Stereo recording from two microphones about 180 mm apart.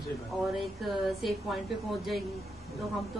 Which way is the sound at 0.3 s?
5° left (ahead or behind).